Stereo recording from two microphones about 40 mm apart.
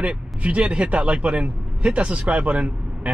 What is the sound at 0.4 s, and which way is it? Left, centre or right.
A man's voice, right.